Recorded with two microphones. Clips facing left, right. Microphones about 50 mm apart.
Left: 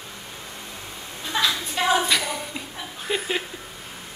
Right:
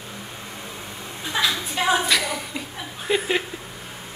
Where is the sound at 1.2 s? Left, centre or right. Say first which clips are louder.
Even; centre.